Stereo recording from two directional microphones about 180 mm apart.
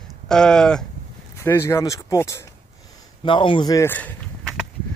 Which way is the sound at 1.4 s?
15° left (ahead or behind).